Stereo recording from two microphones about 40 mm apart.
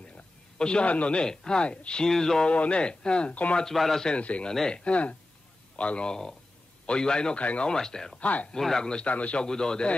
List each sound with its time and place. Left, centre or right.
0.6 s a man's voice: left
1.2 s speech: centre
1.7 s a man's voice: left
2.0 s speech: centre
2.4 s speech: left
3.7 s speech: centre
4.2 s a man's voice: left
7.3 s a man's voice: left
7.6 s speech: centre
8.2 s a man's voice: left
8.5 s speech: centre
9.0 s a man's voice: left
9.4 s speech: centre